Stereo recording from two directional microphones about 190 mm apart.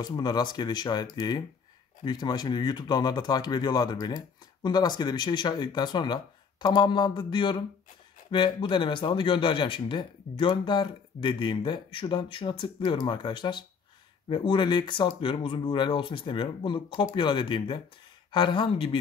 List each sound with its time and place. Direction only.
0.0 s speech: 20° left (ahead or behind)